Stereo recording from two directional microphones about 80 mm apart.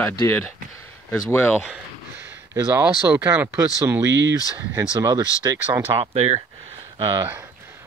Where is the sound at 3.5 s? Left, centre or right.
Right.